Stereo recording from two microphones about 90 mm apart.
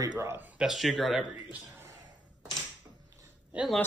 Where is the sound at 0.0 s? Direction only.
35° right (ahead or behind).